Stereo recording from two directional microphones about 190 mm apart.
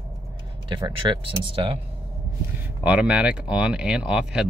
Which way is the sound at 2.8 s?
5° right (ahead or behind).